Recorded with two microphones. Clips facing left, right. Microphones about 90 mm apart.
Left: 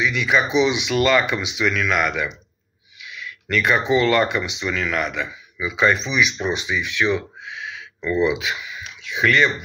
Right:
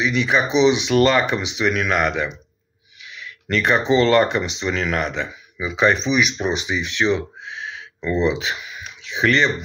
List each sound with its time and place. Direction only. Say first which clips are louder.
0.0 s speech: right 1 dB; 30° right (ahead or behind)
0.9 s speech: right 2 dB; 35° right (ahead or behind)
1.6 s speech: right 1 dB; 25° right (ahead or behind)
3.0 s a sound: left 2 dB; 30° right (ahead or behind)
4.2 s speech: right 2 dB; 30° right (ahead or behind)
4.9 s speech: right 1 dB; 40° right (ahead or behind)
5.2 s speech: even; 25° right (ahead or behind)